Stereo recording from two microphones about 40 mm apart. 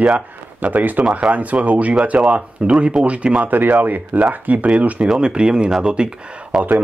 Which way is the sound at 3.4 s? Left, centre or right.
Right.